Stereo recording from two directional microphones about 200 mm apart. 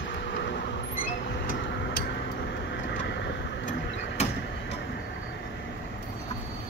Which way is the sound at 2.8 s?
60° left (ahead or behind).